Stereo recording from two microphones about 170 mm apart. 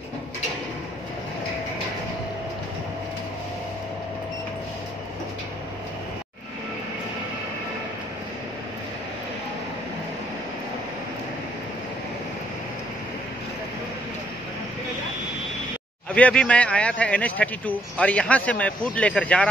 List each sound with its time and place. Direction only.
16.2 s a man's voice: 5° left (ahead or behind)